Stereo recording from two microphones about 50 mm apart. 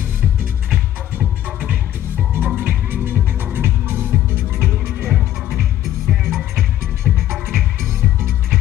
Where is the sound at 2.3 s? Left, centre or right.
Right.